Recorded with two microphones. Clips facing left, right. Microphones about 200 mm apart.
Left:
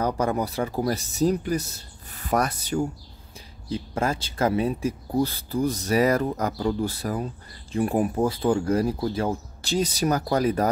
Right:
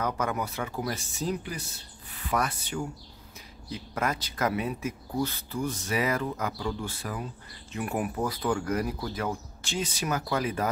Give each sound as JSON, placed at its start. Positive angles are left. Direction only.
{"t": 0.0, "sound": "speech", "side_deg": 35}
{"t": 3.6, "sound": "speech", "side_deg": 30}